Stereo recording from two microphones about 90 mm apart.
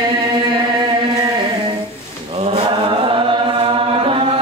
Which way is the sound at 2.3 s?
85° right.